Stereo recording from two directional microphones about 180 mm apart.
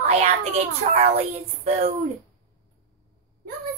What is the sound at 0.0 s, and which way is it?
A woman's voice, 35° right (ahead or behind).